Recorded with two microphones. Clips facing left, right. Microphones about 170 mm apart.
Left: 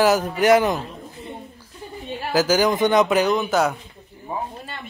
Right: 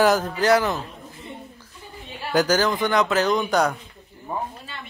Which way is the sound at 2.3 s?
10° left (ahead or behind).